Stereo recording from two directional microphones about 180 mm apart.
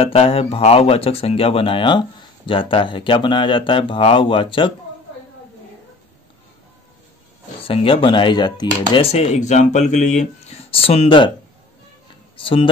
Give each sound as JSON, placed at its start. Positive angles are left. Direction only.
{"t": 0.0, "sound": "speech", "side_deg": 30}
{"t": 7.6, "sound": "speech", "side_deg": 30}
{"t": 8.9, "sound": "speech", "side_deg": 35}
{"t": 12.4, "sound": "speech", "side_deg": 30}